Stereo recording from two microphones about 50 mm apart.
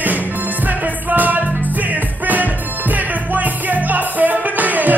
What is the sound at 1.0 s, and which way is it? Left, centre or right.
Music, right.